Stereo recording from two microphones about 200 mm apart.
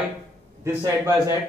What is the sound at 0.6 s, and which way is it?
Speech, 15° right (ahead or behind).